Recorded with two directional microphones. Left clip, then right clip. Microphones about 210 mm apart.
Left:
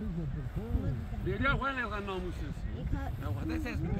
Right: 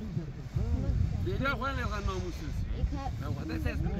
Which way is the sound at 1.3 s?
55° right (ahead or behind).